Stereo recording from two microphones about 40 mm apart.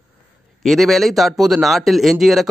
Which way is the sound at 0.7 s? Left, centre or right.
Centre.